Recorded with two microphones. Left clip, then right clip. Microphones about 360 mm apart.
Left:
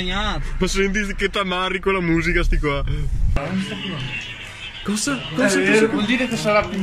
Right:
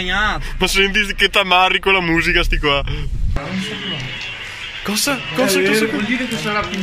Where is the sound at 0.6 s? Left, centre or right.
Centre.